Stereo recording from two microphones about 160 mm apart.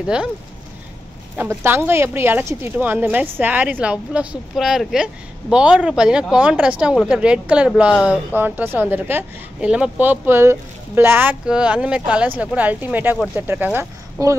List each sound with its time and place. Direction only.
0.0 s speech: 5° right (ahead or behind)
1.3 s a woman's voice: 15° right (ahead or behind)